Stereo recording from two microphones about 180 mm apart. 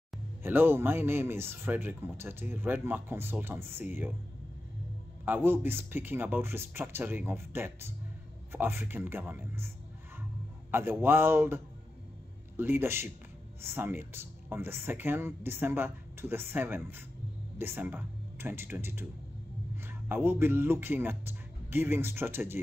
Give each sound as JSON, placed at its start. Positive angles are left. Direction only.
{"t": 0.4, "sound": "speech", "side_deg": -10}
{"t": 5.2, "sound": "speech", "side_deg": -10}
{"t": 10.7, "sound": "speech", "side_deg": -15}